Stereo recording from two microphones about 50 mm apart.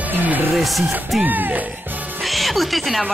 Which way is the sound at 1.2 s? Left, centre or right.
Right.